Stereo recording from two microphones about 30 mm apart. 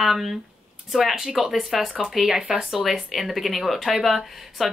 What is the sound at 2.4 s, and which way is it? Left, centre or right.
Speech, right.